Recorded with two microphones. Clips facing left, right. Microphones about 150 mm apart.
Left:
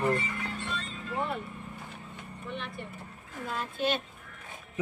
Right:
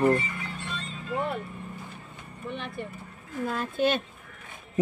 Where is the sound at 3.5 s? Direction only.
55° right (ahead or behind).